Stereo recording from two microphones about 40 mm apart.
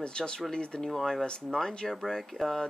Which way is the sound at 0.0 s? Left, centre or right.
Left.